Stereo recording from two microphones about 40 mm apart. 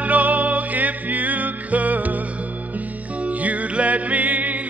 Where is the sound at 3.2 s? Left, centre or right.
Right.